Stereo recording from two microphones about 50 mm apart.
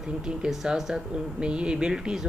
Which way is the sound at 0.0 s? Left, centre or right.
Centre.